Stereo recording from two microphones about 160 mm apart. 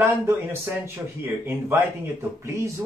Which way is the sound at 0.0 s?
15° right (ahead or behind).